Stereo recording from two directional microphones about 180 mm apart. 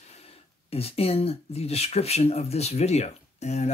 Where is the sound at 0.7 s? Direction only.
35° left (ahead or behind).